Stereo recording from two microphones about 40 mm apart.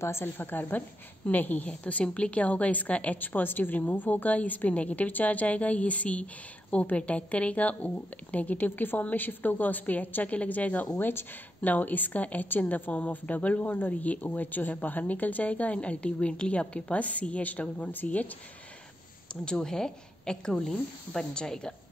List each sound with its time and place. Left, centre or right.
0.1 s a woman's voice: left
3.2 s a woman's voice: left
11.0 s a woman's voice: left
19.4 s a woman's voice: centre